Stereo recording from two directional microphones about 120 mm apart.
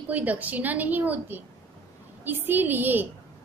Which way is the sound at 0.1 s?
15° right (ahead or behind).